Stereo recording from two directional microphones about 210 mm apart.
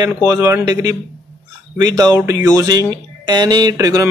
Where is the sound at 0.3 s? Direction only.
15° right (ahead or behind).